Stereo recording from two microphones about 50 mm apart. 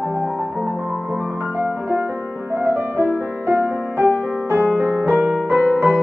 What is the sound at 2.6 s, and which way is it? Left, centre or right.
Music, right.